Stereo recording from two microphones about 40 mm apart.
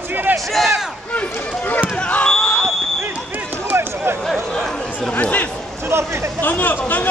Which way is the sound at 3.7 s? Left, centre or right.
Right.